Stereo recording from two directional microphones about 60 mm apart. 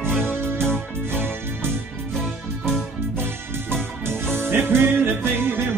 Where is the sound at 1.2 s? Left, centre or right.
Right.